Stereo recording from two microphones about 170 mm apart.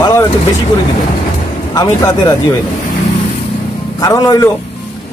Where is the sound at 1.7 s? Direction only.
20° left (ahead or behind).